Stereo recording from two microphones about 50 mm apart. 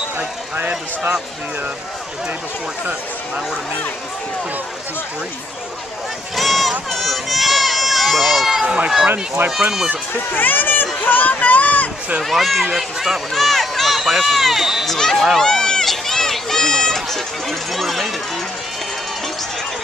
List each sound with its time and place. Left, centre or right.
0.6 s speech: right
6.3 s run: centre
8.6 s speech: right
9.4 s speech: right
10.3 s speech: left
12.2 s speech: centre
14.9 s speech: centre
15.3 s run: centre